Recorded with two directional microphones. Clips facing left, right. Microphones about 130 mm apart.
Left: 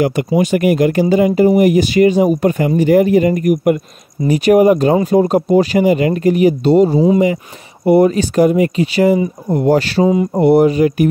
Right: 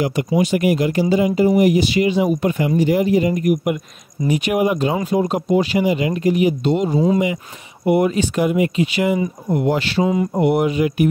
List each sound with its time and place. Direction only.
0.0 s speech: 55° left (ahead or behind)
4.3 s speech: 40° left (ahead or behind)